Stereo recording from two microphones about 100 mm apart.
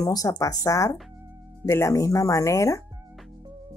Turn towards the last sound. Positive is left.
turn(degrees=30)  # may be behind; listen again after turning